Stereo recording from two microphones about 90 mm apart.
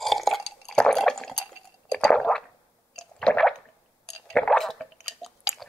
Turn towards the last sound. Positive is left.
turn(degrees=0)  # may be behind; listen again after turning